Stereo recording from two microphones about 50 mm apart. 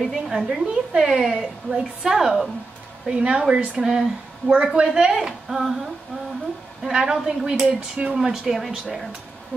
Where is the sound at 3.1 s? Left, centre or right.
Centre.